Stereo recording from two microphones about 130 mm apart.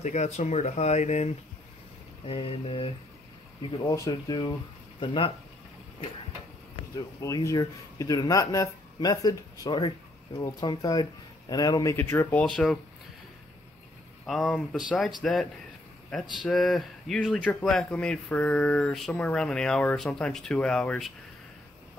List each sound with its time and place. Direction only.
0.0 s speech: 65° left (ahead or behind)
2.2 s mantra: 45° left (ahead or behind)
3.9 s speech: 30° left (ahead or behind)
7.2 s speech: 25° left (ahead or behind)
12.4 s speech: 5° left (ahead or behind)
14.2 s speech: centre (ahead or behind)